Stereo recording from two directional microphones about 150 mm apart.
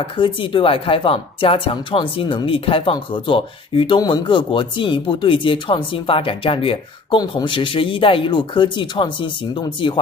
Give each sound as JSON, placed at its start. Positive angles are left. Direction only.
{"t": 0.2, "sound": "speech", "side_deg": 35}